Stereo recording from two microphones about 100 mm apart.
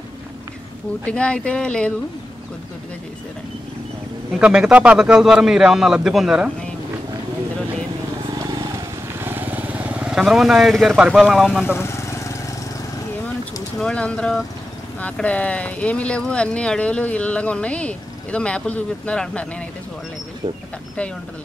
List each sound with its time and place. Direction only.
1.0 s speech: 10° left (ahead or behind)
4.4 s a man's voice: 10° right (ahead or behind)
9.2 s vehicle: 20° right (ahead or behind); by 11.0 s centre (ahead or behind)
11.0 s speech: 5° right (ahead or behind)
11.6 s vehicle: 25° left (ahead or behind)
13.7 s speech: 10° left (ahead or behind)